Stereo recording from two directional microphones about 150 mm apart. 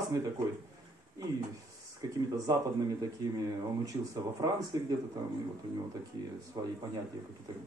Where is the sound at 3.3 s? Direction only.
25° right (ahead or behind).